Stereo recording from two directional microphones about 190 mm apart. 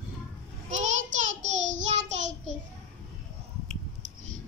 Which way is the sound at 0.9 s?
85° right.